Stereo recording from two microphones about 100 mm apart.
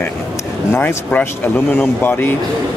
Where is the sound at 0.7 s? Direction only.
20° left (ahead or behind).